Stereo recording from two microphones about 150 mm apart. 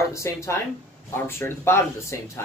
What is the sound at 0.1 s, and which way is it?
Speech, 20° left (ahead or behind).